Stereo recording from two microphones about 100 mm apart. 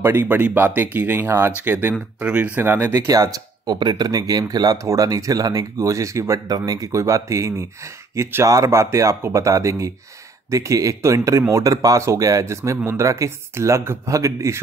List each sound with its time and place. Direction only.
0.0 s speech: 20° right (ahead or behind)
3.0 s speech: 35° right (ahead or behind)